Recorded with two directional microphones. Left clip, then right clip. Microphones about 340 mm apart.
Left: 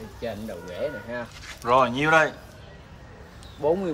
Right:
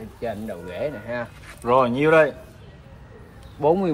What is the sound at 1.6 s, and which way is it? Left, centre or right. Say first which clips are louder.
Speech: right 2 dB; centre.